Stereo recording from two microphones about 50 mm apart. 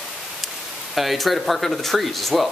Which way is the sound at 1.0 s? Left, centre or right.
Centre.